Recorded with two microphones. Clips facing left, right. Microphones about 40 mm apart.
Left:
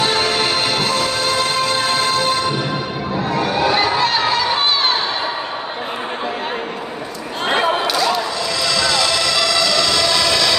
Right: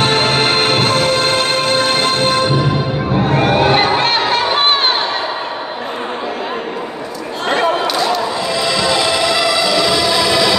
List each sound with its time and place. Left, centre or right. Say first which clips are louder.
0.0 s music: right 3 dB; right
3.3 s crowd: right 4 dB; right
7.4 s a sound: right 2 dB; centre
8.6 s music: right 2 dB; right